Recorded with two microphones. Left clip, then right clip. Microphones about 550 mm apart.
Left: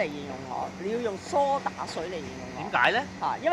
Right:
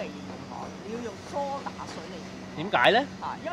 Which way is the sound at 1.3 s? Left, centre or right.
Left.